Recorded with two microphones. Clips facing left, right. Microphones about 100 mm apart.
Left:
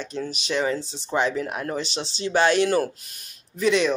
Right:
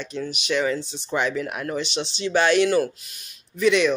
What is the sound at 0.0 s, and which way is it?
Speech, 35° left (ahead or behind).